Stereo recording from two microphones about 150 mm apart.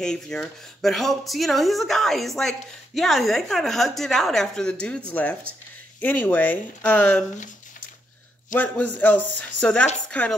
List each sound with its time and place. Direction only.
0.0 s speech: 5° left (ahead or behind)
8.5 s a man's voice: 60° left (ahead or behind)
9.2 s speech: 10° left (ahead or behind)